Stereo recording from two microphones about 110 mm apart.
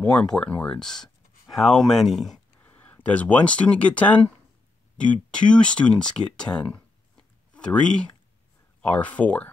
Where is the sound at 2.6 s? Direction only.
15° left (ahead or behind).